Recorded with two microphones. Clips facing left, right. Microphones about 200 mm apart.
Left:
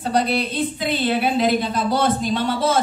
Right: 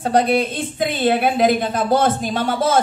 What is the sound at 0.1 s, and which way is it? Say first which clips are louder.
A woman's voice: right 3 dB; 50° right (ahead or behind).